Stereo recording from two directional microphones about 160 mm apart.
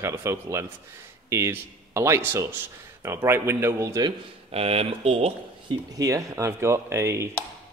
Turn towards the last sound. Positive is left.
turn(degrees=-15)  # may be behind; listen again after turning